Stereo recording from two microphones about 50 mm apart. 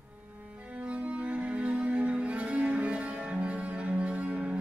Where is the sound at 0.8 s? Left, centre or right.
Right.